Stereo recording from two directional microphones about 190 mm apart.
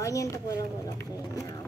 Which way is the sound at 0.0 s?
15° left (ahead or behind).